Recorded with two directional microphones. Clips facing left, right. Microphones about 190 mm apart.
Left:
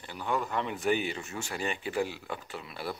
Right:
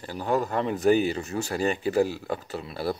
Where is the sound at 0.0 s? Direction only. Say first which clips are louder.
Right 6 dB; 40° right (ahead or behind).